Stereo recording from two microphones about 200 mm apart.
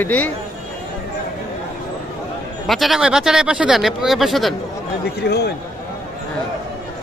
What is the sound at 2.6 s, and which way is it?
Speech, centre (ahead or behind).